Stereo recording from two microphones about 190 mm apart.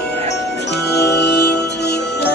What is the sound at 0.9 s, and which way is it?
Music, 60° left (ahead or behind).